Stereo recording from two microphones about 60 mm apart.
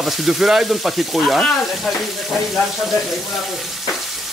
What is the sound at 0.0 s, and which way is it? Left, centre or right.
Frying, centre.